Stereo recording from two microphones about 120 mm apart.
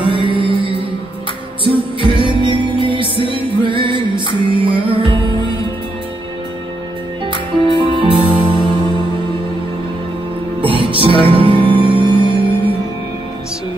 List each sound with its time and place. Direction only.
0.1 s music: 45° right (ahead or behind)
1.6 s music: 45° right (ahead or behind)
7.2 s music: 45° right (ahead or behind)
10.6 s music: 45° right (ahead or behind)